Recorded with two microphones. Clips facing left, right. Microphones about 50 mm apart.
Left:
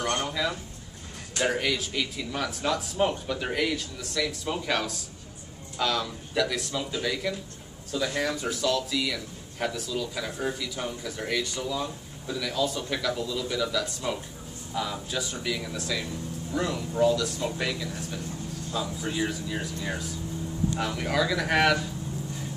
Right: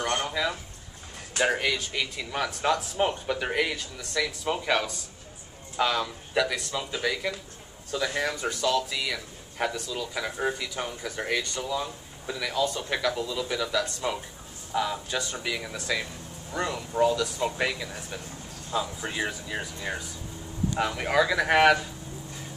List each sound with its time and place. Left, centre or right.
0.0 s a sound: centre
1.3 s a man's voice: centre
10.5 s speech: centre
10.9 s speech: centre
17.4 s speech: centre